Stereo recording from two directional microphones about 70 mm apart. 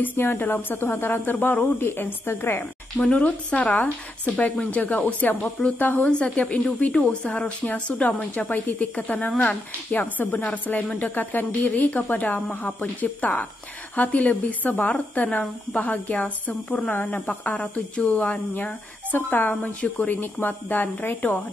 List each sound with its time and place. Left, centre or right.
0.0 s a woman's voice: left
3.0 s a woman's voice: centre